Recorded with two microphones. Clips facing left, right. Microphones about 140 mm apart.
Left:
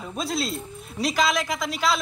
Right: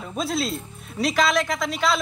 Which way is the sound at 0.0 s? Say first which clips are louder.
Right 2 dB; centre (ahead or behind).